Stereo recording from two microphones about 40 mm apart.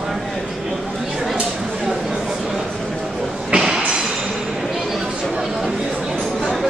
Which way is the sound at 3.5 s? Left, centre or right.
Centre.